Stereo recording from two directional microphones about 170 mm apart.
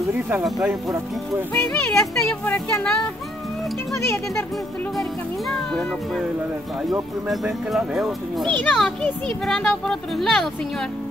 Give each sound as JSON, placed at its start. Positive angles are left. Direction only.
{"t": 0.3, "sound": "a child's voice", "side_deg": -5}
{"t": 1.5, "sound": "speech", "side_deg": 10}
{"t": 5.5, "sound": "a child's voice", "side_deg": 5}